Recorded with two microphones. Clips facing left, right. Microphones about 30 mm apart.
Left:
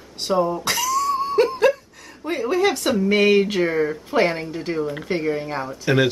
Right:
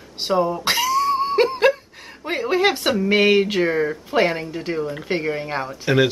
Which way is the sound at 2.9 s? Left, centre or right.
Centre.